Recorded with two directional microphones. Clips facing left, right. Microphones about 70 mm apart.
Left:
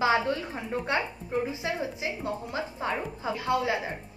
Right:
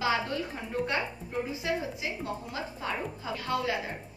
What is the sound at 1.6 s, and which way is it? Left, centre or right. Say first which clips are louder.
Speech: left 1 dB; left.